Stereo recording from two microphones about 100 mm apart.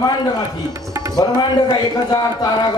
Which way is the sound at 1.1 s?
45° left (ahead or behind).